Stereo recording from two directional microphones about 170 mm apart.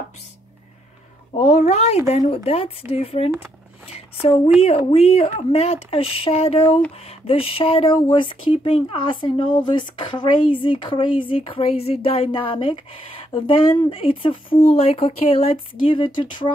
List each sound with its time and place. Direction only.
1.4 s speech: 40° left (ahead or behind)